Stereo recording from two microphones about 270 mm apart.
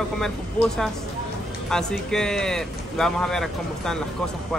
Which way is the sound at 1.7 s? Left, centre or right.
Centre.